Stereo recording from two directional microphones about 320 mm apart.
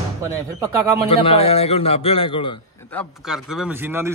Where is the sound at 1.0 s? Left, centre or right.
Centre.